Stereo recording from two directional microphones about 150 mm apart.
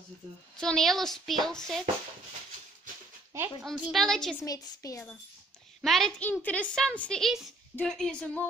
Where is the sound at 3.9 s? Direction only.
Centre (ahead or behind).